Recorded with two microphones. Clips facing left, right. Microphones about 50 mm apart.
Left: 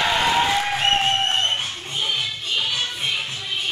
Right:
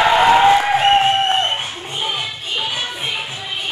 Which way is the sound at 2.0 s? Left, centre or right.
Centre.